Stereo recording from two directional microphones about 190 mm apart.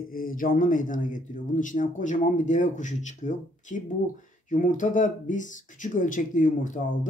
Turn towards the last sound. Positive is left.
turn(degrees=40)  # may be behind; listen again after turning